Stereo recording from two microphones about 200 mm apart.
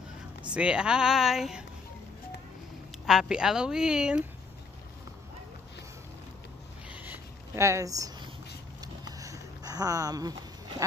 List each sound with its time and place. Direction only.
0.4 s speech: 5° right (ahead or behind)
3.1 s speech: 5° right (ahead or behind)
6.9 s a sound: 10° right (ahead or behind)